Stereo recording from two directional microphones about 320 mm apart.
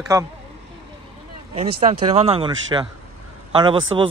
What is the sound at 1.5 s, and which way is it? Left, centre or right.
Speech, centre.